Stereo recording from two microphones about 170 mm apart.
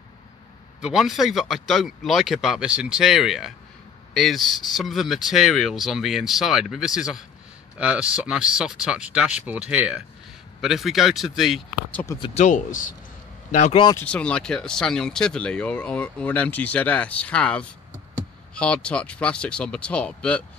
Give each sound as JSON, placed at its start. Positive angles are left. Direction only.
{"t": 0.7, "sound": "speech", "side_deg": -5}
{"t": 11.9, "sound": "speech", "side_deg": 10}
{"t": 12.4, "sound": "a man's voice", "side_deg": 45}
{"t": 13.9, "sound": "speech", "side_deg": 5}